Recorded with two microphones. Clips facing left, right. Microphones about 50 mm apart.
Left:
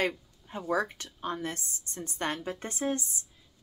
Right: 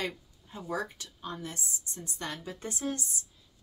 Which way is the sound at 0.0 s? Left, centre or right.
Left.